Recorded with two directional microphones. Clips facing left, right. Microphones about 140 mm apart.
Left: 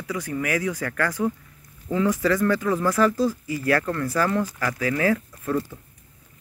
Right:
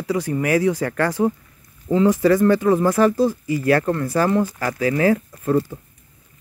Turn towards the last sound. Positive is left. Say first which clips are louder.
# right 6 dB
turn(degrees=-30)  # may be behind; listen again after turning